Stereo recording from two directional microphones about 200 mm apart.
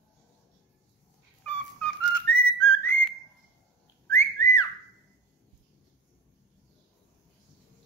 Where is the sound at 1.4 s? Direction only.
5° left (ahead or behind).